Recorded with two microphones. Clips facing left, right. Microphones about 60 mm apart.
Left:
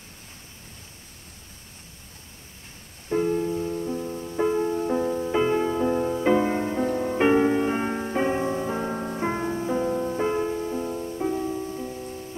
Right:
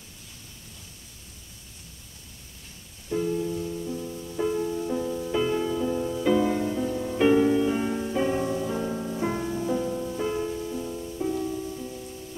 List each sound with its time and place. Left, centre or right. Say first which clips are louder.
3.1 s music: left 3 dB; left